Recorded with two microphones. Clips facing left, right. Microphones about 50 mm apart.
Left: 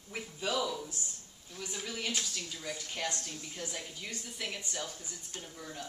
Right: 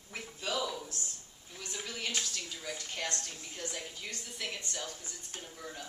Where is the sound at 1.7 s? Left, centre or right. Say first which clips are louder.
Even; centre.